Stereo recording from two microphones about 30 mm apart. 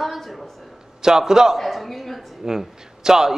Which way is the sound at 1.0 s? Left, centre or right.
Centre.